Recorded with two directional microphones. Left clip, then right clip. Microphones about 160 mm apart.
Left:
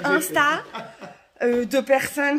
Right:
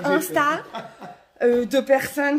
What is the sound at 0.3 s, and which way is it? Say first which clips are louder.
Speech: left 1 dB; 5° left (ahead or behind).